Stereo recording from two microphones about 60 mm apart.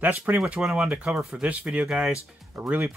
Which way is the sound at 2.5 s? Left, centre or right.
Centre.